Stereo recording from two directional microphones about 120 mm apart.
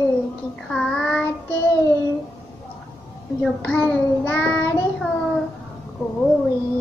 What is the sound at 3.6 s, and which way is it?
Child singing, 15° left (ahead or behind).